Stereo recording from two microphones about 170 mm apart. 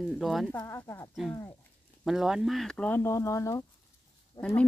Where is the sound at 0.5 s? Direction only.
20° left (ahead or behind).